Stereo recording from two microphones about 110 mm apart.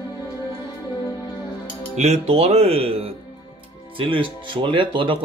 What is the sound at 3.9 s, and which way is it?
Speech, 50° right (ahead or behind).